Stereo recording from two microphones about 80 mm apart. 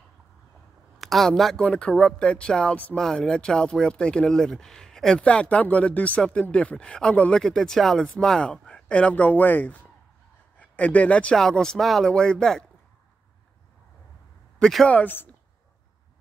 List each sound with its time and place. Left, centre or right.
0.9 s speech: centre
14.6 s a man's voice: centre
14.9 s speech: left